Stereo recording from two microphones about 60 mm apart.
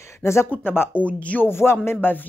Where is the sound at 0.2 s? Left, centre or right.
Left.